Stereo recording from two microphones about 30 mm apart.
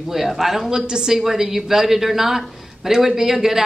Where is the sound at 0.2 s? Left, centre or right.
Centre.